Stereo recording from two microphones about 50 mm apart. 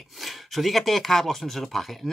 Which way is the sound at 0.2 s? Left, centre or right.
Centre.